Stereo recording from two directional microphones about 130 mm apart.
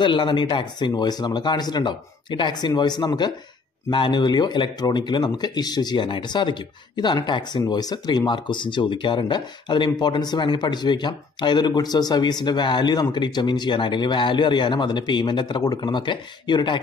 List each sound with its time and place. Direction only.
0.0 s speech: 40° left (ahead or behind)